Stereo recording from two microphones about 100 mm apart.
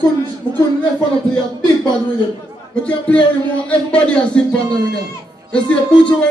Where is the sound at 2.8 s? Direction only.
10° left (ahead or behind).